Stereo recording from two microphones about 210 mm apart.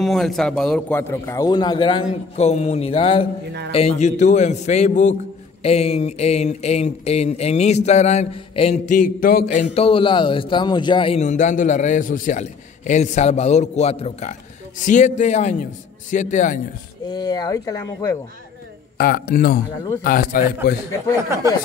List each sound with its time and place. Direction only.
0.0 s a man's voice: centre (ahead or behind); by 9.7 s 40° left (ahead or behind)
9.8 s a man's voice: 25° left (ahead or behind)
17.1 s a man's voice: 20° left (ahead or behind)
18.9 s speech: 45° left (ahead or behind)